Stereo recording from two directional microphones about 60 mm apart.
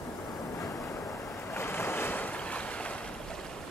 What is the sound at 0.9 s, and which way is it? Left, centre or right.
Waves, left.